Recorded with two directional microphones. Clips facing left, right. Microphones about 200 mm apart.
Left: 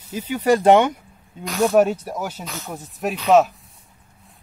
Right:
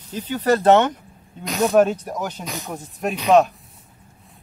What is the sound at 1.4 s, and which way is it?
Speech, 20° right (ahead or behind).